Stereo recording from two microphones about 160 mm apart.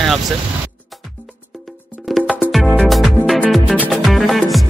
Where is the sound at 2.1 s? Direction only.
Centre (ahead or behind).